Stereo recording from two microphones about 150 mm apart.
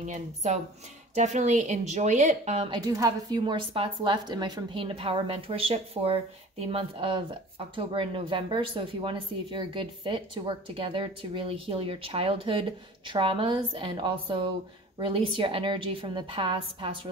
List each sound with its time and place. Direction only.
0.0 s a woman's voice: 50° right (ahead or behind)
2.9 s speech: 25° right (ahead or behind)